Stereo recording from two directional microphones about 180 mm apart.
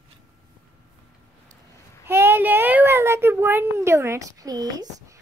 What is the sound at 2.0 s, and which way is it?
A child's voice, 10° right (ahead or behind).